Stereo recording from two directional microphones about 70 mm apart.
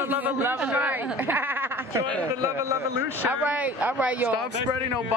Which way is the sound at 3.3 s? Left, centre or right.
Centre.